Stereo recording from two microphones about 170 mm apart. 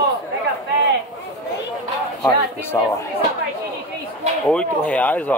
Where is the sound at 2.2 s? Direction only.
15° left (ahead or behind).